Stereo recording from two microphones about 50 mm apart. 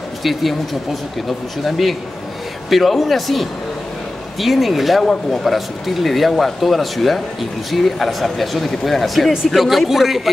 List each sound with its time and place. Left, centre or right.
0.2 s speech: centre
1.6 s speech: centre